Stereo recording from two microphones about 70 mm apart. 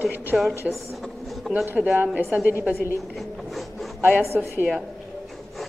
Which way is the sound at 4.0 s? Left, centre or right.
Right.